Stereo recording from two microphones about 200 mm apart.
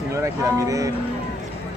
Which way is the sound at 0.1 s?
15° right (ahead or behind).